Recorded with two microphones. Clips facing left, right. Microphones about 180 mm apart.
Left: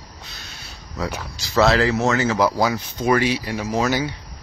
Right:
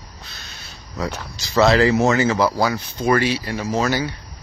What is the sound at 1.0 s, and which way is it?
Speech, 5° left (ahead or behind).